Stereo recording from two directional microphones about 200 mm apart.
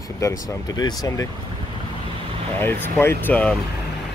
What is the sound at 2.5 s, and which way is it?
Speech, 10° left (ahead or behind).